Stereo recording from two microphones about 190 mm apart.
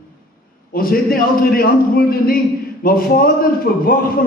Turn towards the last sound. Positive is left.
turn(degrees=50)  # may be behind; listen again after turning